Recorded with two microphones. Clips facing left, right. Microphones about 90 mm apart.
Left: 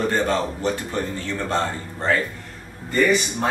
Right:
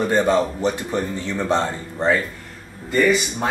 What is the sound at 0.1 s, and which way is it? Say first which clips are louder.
A man's voice: right 4 dB; 15° right (ahead or behind).